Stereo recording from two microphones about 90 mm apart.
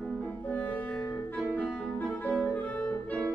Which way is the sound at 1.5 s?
15° left (ahead or behind).